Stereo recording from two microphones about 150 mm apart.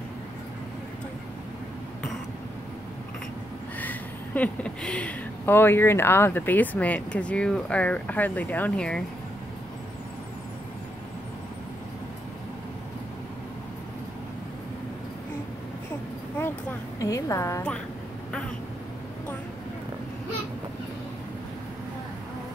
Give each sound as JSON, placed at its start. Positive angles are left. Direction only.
{"t": 3.8, "sound": "speech", "side_deg": 10}
{"t": 17.0, "sound": "a woman's voice", "side_deg": 20}